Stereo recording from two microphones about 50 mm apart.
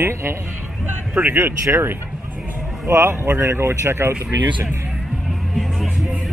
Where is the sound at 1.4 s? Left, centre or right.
Right.